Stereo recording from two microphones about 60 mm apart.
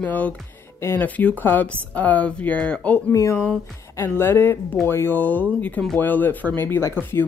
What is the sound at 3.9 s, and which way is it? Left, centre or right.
Speech, left.